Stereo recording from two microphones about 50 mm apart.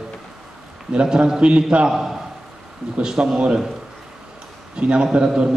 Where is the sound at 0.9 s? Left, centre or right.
Centre.